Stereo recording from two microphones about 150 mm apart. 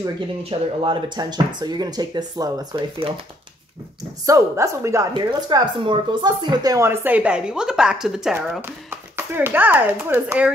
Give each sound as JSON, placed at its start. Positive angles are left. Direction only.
{"t": 0.4, "sound": "speech", "side_deg": -35}
{"t": 4.3, "sound": "speech", "side_deg": -20}
{"t": 8.4, "sound": "speech", "side_deg": -15}